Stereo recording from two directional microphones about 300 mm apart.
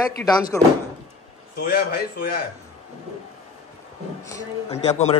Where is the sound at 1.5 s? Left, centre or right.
Left.